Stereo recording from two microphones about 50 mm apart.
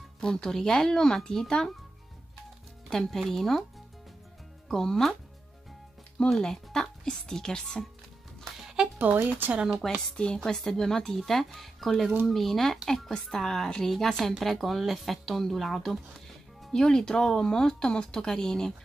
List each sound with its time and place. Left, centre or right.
0.2 s speech: centre
2.9 s speech: centre
4.6 s speech: centre
6.1 s speech: centre
8.5 s music: centre
8.9 s speech: right
10.1 s speech: centre